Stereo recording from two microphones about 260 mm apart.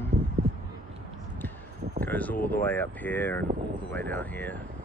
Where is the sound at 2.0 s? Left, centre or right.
Centre.